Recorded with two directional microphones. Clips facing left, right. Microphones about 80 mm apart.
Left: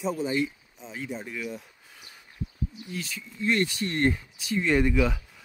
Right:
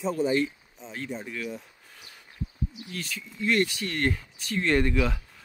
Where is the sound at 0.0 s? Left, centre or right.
Centre.